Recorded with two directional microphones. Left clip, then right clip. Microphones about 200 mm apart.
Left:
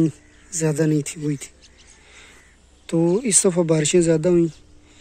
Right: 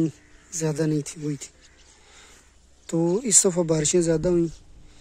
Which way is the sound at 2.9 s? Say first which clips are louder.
Left 3 dB; 10° right (ahead or behind).